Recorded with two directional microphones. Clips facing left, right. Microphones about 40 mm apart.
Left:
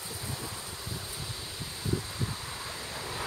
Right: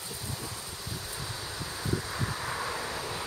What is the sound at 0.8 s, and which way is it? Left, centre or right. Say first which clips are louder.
Wind: even; left.